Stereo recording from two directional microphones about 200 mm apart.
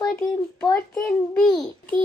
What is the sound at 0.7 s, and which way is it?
A child's voice, 5° left (ahead or behind).